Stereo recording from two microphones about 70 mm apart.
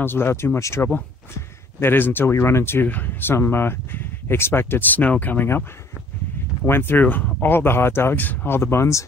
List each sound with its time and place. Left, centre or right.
0.0 s speech: left
1.8 s speech: left
6.6 s speech: left